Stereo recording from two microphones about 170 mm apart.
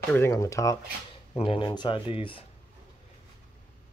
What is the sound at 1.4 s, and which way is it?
Speech, 30° left (ahead or behind).